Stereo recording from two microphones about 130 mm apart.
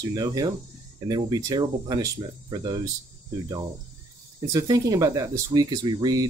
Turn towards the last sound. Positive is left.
turn(degrees=-30)  # may be behind; listen again after turning